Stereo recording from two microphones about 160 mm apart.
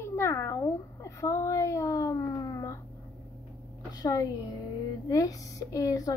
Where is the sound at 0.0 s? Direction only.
15° left (ahead or behind).